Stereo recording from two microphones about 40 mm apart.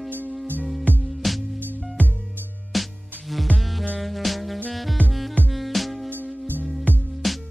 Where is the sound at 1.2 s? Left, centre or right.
Centre.